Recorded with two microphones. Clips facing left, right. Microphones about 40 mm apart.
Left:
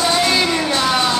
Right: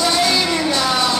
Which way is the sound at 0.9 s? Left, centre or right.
Centre.